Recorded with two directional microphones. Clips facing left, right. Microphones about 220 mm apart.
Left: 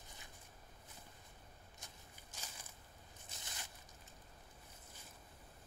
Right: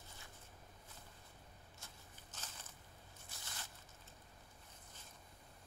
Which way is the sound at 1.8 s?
10° left (ahead or behind).